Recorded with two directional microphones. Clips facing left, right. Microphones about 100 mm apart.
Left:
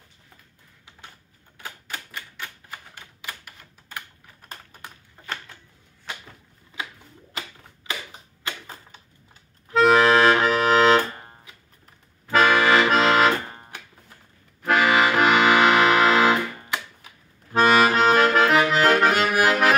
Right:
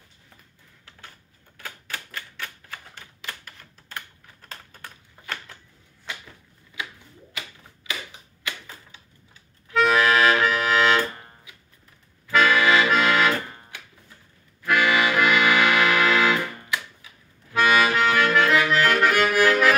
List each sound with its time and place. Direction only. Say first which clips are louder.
1.6 s typewriter: even; 20° left (ahead or behind)
4.5 s typing: left 1 dB; 15° left (ahead or behind)
7.3 s a sound: left 3 dB; 35° left (ahead or behind)
8.5 s typewriter: left 1 dB; 40° left (ahead or behind)
9.7 s accordion: left 3 dB; 35° left (ahead or behind)